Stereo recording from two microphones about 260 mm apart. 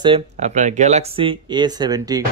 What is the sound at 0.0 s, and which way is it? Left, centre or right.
A man's voice, right.